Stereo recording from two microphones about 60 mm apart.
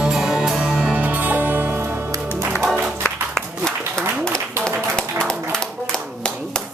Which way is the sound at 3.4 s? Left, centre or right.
Centre.